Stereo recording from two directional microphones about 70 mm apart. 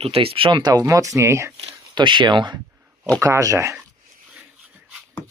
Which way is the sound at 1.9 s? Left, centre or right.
Right.